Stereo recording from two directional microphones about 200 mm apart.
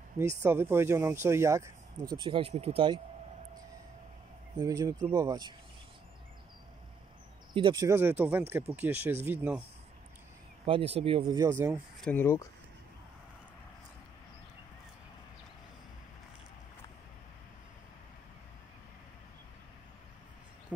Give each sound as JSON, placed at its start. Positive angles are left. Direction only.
{"t": 0.2, "sound": "speech", "side_deg": -10}
{"t": 4.6, "sound": "speech", "side_deg": -20}
{"t": 7.5, "sound": "speech", "side_deg": -20}
{"t": 10.6, "sound": "speech", "side_deg": -30}
{"t": 12.0, "sound": "speech", "side_deg": 10}